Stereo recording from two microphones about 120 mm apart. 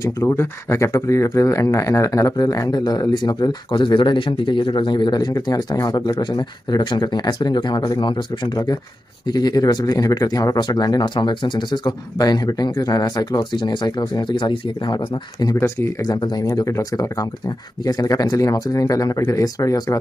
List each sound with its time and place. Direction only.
0.0 s speech: 25° left (ahead or behind); by 15.0 s 45° left (ahead or behind)
15.4 s speech: 25° left (ahead or behind)
16.1 s speech: 40° left (ahead or behind)
16.4 s speech: 25° left (ahead or behind)